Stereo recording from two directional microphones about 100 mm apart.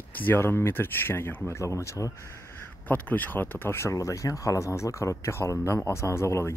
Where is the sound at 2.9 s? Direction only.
15° left (ahead or behind).